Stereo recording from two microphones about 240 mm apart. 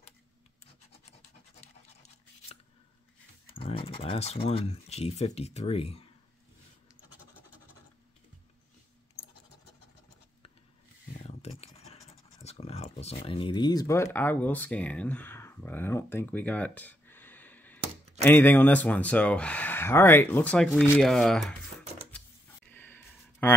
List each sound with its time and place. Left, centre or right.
3.5 s speech: left
11.2 s scratch: left
13.2 s speech: left; by 21.5 s centre
22.7 s a sound: centre